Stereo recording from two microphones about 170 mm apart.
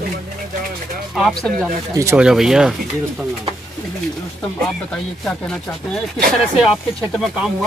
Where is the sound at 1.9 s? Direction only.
15° right (ahead or behind).